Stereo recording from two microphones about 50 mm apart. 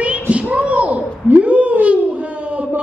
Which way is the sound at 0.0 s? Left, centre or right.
Right.